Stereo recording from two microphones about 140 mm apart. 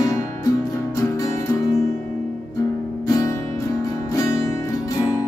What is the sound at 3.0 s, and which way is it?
Music, 25° left (ahead or behind).